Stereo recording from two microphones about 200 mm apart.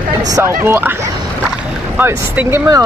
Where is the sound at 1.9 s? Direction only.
10° right (ahead or behind).